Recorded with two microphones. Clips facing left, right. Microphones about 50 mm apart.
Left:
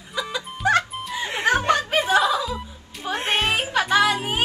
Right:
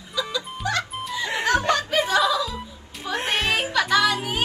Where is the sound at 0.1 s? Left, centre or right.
Left.